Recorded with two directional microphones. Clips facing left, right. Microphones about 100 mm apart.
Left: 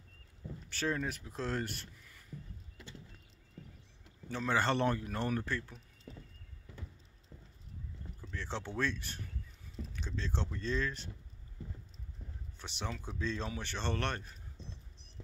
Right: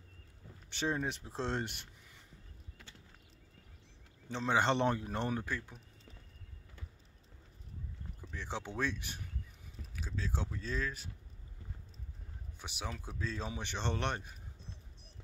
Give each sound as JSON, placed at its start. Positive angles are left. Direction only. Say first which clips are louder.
{"t": 0.7, "sound": "speech", "louder": "even", "side_deg": -20}
{"t": 4.3, "sound": "speech", "louder": "right 1 dB", "side_deg": -20}
{"t": 8.2, "sound": "speech", "louder": "left 1 dB", "side_deg": -15}
{"t": 12.5, "sound": "speech", "louder": "left 1 dB", "side_deg": -10}
{"t": 13.5, "sound": "speech", "louder": "even", "side_deg": -15}